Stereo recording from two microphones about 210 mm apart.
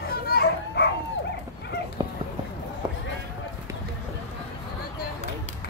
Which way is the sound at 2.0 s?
20° right (ahead or behind).